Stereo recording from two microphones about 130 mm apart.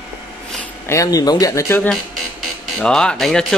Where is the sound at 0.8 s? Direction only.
25° left (ahead or behind).